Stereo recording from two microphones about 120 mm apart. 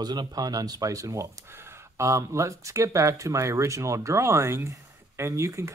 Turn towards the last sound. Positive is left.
turn(degrees=-25)  # may be behind; listen again after turning